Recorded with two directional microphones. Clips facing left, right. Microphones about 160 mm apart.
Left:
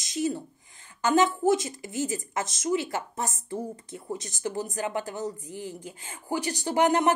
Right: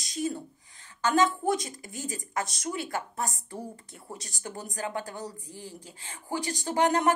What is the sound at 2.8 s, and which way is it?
Speech, 20° left (ahead or behind).